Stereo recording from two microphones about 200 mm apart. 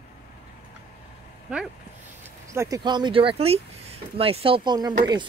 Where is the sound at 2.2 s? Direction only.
15° right (ahead or behind).